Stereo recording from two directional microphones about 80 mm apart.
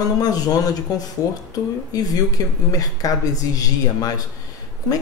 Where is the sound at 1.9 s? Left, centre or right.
Left.